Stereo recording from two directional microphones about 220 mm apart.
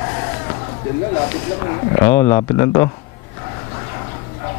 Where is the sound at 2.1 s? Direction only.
10° left (ahead or behind).